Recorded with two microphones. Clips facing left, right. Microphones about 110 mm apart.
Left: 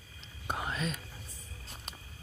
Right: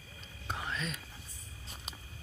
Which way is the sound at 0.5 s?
10° left (ahead or behind).